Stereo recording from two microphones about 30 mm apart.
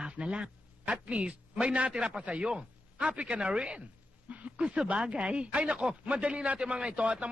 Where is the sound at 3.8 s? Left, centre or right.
Right.